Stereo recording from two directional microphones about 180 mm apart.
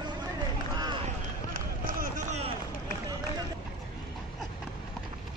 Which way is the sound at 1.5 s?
45° right (ahead or behind).